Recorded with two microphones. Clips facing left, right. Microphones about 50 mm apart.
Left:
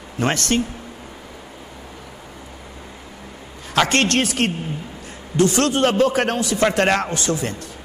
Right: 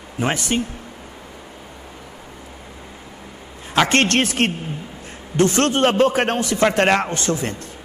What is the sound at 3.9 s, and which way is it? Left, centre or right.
A man's voice, right.